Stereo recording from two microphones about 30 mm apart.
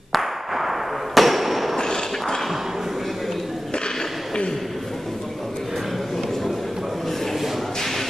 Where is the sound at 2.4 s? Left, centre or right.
Centre.